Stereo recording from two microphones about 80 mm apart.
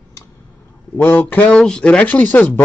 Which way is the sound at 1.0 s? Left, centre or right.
Left.